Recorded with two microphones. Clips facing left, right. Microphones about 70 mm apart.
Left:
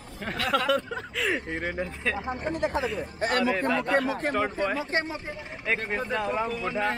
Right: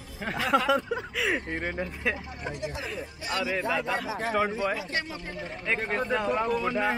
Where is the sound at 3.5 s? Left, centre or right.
Centre.